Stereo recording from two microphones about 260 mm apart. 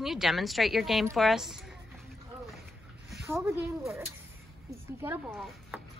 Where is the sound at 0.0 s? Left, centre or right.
Centre.